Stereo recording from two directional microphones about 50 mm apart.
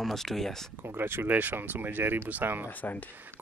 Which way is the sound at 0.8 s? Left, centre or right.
Right.